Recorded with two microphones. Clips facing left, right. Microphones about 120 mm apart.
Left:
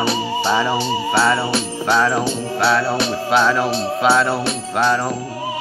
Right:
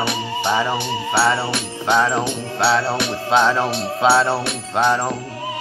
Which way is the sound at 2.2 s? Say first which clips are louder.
Left 1 dB; 20° right (ahead or behind).